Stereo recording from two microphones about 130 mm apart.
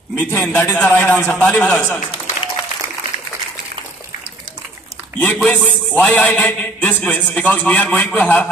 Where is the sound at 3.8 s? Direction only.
40° right (ahead or behind).